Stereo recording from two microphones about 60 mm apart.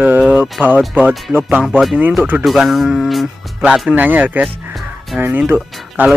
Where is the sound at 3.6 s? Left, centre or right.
Right.